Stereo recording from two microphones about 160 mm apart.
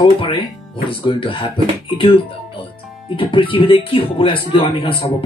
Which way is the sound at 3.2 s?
30° left (ahead or behind).